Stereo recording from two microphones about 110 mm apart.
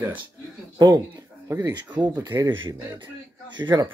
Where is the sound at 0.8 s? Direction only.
35° right (ahead or behind).